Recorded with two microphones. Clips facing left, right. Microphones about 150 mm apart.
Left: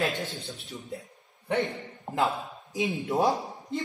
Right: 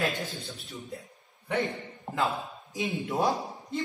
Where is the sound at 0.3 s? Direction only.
Centre (ahead or behind).